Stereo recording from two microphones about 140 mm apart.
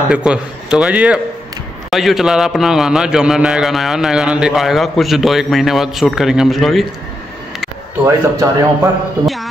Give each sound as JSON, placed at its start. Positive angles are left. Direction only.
{"t": 0.1, "sound": "a man's voice", "side_deg": -5}
{"t": 8.0, "sound": "speech", "side_deg": -20}
{"t": 9.2, "sound": "a sound", "side_deg": 0}